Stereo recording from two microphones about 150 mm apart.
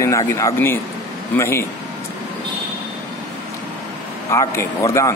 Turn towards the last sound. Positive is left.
turn(degrees=20)  # may be behind; listen again after turning